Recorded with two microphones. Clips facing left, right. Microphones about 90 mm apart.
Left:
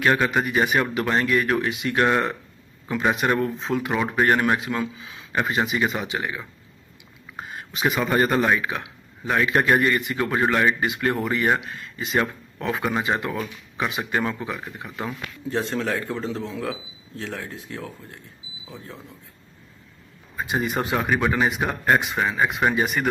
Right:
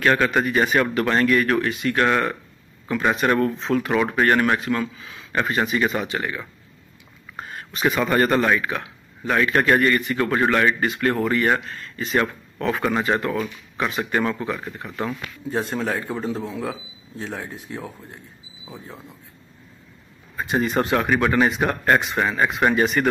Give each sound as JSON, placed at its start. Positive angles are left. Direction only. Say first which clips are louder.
{"t": 0.0, "sound": "speech", "louder": "right 2 dB", "side_deg": 10}
{"t": 15.7, "sound": "speech", "louder": "right 1 dB", "side_deg": -10}
{"t": 20.3, "sound": "speech", "louder": "right 3 dB", "side_deg": 5}